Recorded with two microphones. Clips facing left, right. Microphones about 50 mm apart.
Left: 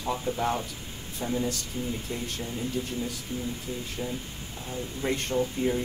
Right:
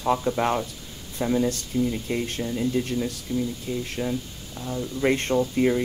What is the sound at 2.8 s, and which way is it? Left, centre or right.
Speech, right.